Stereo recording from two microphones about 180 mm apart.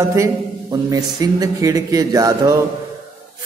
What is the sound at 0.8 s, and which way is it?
A man's voice, 20° right (ahead or behind).